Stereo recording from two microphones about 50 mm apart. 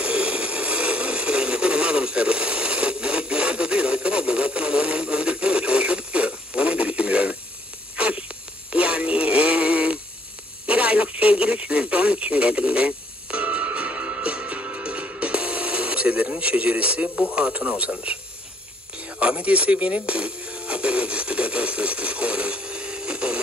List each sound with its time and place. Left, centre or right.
0.0 s a sound: right
8.7 s synthetic singing: right
10.7 s radio: right
17.3 s speech: right
18.9 s music: right